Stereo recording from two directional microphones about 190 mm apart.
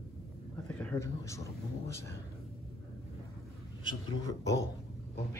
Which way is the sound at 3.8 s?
20° left (ahead or behind).